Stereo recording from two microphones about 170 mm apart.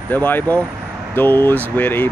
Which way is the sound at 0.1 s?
10° left (ahead or behind).